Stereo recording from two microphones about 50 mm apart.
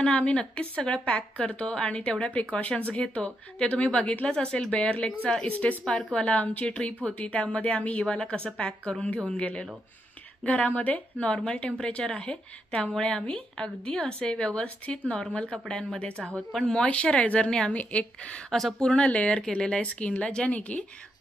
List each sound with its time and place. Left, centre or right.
0.0 s speech: left
16.5 s a woman's voice: centre
16.8 s speech: left
17.5 s a woman's voice: centre
17.7 s speech: left
18.5 s speech: centre; by 20.8 s left